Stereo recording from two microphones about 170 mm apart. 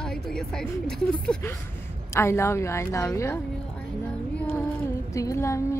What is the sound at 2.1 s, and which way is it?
A woman's voice, 15° left (ahead or behind).